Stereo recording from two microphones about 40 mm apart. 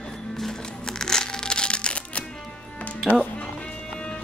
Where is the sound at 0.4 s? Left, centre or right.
Centre; by 2.2 s left.